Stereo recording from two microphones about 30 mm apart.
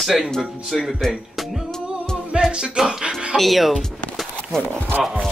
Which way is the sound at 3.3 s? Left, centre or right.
Centre.